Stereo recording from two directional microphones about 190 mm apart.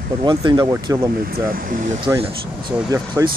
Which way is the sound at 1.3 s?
50° right (ahead or behind).